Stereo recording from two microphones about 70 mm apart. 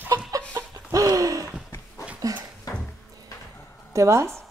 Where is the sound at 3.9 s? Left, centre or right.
Right.